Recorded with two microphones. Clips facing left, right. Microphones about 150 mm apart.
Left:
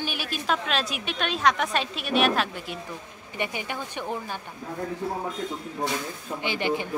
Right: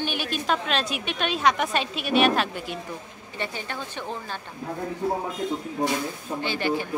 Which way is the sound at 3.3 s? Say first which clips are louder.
Left 1 dB; 15° left (ahead or behind).